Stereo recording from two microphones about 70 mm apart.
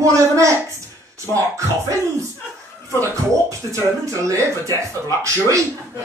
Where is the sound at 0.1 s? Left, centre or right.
Right.